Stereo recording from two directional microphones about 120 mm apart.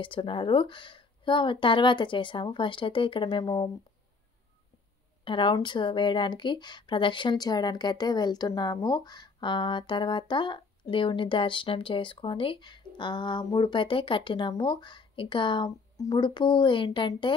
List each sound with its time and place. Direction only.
0.0 s speech: 45° left (ahead or behind)
5.2 s speech: 45° left (ahead or behind)